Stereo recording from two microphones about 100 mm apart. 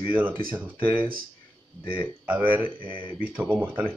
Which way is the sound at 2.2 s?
15° right (ahead or behind).